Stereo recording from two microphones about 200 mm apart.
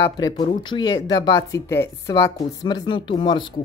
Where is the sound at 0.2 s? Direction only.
25° left (ahead or behind).